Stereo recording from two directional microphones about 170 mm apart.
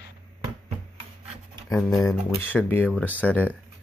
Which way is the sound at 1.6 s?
15° left (ahead or behind).